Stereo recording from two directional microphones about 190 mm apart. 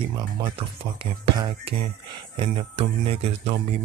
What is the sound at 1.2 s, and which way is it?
Speech, 25° right (ahead or behind).